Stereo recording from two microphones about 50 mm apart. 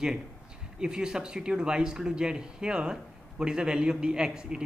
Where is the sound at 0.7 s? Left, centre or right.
Centre.